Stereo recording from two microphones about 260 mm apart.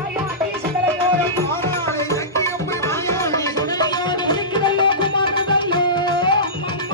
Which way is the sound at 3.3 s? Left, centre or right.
Centre.